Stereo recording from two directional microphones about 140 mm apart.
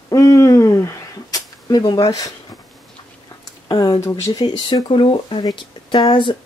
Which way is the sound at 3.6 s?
35° left (ahead or behind).